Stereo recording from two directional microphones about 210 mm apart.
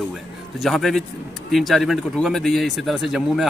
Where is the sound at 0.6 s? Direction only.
Centre (ahead or behind).